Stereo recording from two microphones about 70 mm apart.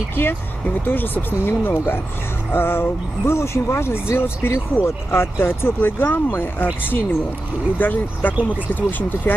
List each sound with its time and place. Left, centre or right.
0.1 s speech: left